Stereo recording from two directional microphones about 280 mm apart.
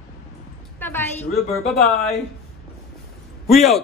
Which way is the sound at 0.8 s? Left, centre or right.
Centre.